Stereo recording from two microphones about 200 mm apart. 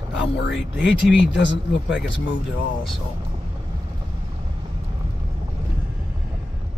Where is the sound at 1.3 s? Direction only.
65° left (ahead or behind).